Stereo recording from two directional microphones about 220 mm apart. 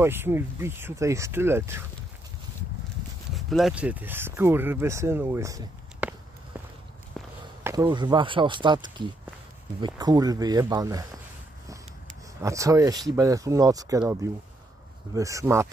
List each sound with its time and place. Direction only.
0.0 s speech: 10° right (ahead or behind)
3.3 s speech: centre (ahead or behind)
6.5 s walk: 10° right (ahead or behind)
7.2 s walk: centre (ahead or behind)
7.6 s speech: 15° right (ahead or behind)
12.4 s speech: 15° right (ahead or behind)